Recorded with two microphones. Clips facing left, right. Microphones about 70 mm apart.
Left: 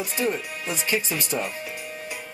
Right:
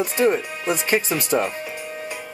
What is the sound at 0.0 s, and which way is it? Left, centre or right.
Speech, right.